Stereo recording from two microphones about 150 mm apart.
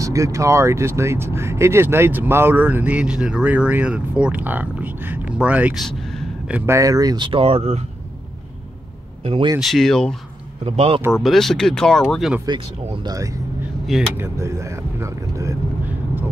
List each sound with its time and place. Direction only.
0.0 s speech: 20° right (ahead or behind); by 6.6 s 5° right (ahead or behind)
6.6 s speech: 20° right (ahead or behind); by 7.8 s 40° right (ahead or behind)
9.2 s speech: 40° right (ahead or behind)
9.6 s speech: centre (ahead or behind)
10.6 s speech: 40° right (ahead or behind)
11.1 s speech: centre (ahead or behind)
12.4 s speech: 30° right (ahead or behind)